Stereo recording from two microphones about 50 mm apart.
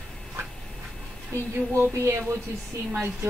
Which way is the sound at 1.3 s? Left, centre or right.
Right.